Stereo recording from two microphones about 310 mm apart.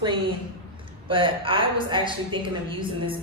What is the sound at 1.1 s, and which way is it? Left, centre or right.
A woman's voice, centre.